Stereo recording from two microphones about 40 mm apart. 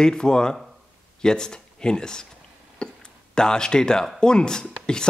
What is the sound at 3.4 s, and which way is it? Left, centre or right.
Speech, centre.